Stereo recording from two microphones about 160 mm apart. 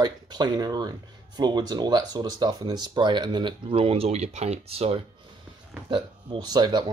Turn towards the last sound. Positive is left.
turn(degrees=-25)  # may be behind; listen again after turning